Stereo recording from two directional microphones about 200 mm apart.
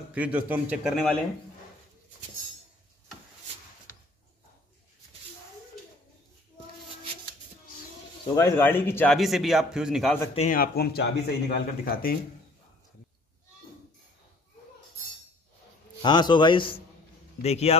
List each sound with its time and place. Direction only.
0.1 s a man's voice: 10° right (ahead or behind)
8.4 s a man's voice: 10° left (ahead or behind)
10.3 s speech: 40° left (ahead or behind)
16.0 s a man's voice: 20° left (ahead or behind)